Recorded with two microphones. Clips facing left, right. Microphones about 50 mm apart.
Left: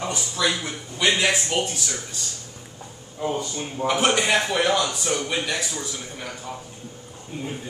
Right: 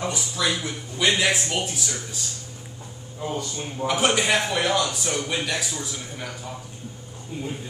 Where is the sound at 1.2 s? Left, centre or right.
Centre.